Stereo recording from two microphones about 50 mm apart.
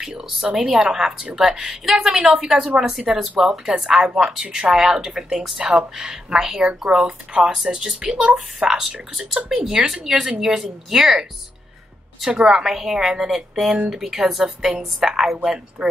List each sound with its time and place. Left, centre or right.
0.5 s a woman's voice: right
2.0 s a woman's voice: centre
12.3 s a woman's voice: centre